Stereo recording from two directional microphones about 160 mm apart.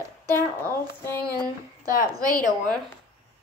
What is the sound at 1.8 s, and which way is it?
Speech, 65° left (ahead or behind).